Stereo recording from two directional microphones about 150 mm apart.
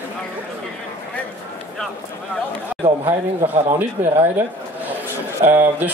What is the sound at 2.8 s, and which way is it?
Speech, 40° right (ahead or behind).